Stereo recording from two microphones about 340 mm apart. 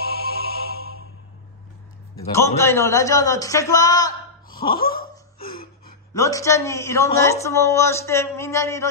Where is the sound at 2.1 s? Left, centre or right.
Centre.